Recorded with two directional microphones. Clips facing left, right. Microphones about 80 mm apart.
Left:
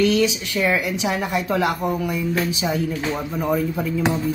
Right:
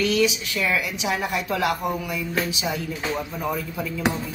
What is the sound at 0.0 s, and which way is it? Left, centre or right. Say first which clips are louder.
Speech: left 3 dB; left.